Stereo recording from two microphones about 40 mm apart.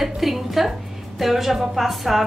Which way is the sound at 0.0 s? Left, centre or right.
Centre.